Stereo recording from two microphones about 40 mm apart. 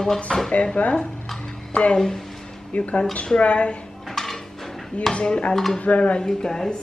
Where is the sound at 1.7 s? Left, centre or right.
Left.